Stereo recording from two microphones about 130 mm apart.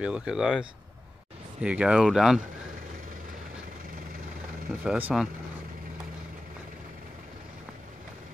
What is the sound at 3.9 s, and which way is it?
Vehicle, 90° right.